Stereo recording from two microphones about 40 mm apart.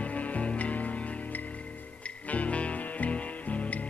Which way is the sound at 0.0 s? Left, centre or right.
Left.